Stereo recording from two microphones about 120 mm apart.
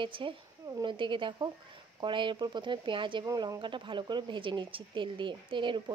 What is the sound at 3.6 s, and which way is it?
Speech, 45° right (ahead or behind).